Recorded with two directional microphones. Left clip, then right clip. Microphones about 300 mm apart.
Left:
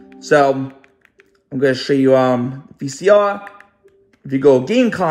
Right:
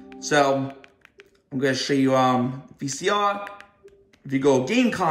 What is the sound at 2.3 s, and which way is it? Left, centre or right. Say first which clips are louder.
Speech: left 4 dB; centre.